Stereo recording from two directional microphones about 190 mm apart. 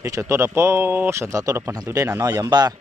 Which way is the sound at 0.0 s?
15° right (ahead or behind).